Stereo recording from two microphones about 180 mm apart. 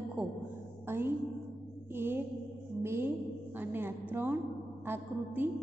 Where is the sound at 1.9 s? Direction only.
10° right (ahead or behind).